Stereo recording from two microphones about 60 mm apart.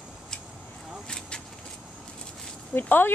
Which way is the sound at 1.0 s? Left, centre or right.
Centre.